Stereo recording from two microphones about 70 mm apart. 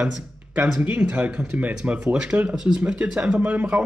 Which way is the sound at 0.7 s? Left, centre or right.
Centre.